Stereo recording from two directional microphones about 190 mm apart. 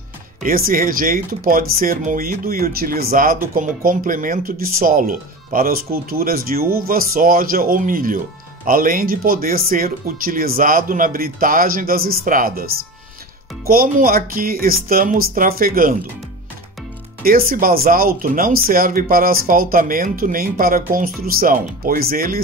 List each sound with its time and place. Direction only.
0.4 s speech: 50° right (ahead or behind)
13.7 s speech: 50° right (ahead or behind)
17.2 s speech: 50° right (ahead or behind)